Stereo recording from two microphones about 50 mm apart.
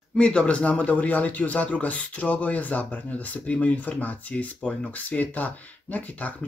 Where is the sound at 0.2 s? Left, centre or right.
Left.